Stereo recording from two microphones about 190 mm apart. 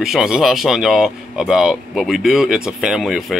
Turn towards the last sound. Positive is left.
turn(degrees=0)  # may be behind; listen again after turning